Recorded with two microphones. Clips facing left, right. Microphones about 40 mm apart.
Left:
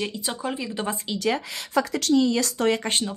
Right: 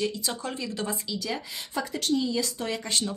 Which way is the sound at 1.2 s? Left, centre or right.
Left.